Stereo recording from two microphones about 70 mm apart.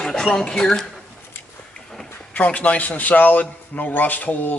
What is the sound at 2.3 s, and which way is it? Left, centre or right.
A man's voice, left.